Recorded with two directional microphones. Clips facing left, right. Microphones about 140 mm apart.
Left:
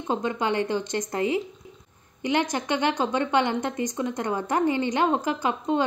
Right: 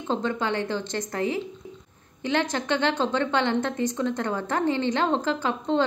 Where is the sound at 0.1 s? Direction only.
15° left (ahead or behind).